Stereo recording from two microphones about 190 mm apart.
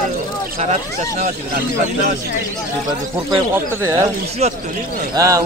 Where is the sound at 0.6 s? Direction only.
40° right (ahead or behind).